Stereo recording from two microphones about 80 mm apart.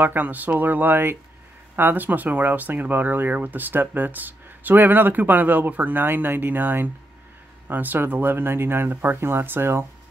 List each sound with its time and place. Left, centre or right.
0.0 s speech: right